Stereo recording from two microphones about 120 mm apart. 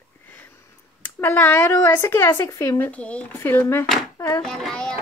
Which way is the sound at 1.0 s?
15° left (ahead or behind).